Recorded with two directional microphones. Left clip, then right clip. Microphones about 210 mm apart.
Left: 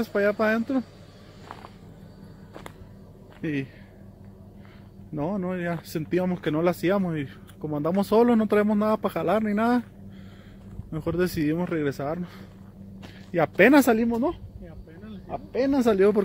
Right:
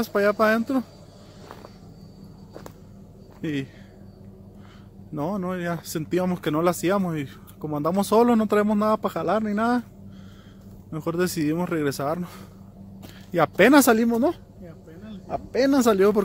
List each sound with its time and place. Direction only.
0.0 s speech: 5° right (ahead or behind)
3.3 s speech: centre (ahead or behind)
5.1 s speech: centre (ahead or behind)
13.3 s speech: 5° right (ahead or behind)
13.9 s a woman's voice: 20° right (ahead or behind)